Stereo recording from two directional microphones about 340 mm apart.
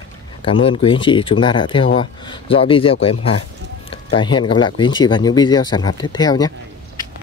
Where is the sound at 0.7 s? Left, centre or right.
Centre.